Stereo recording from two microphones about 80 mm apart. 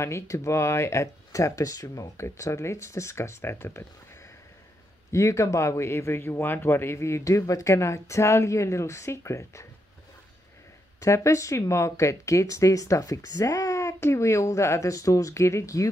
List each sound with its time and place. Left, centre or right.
0.0 s speech: left
5.1 s speech: left
11.0 s speech: left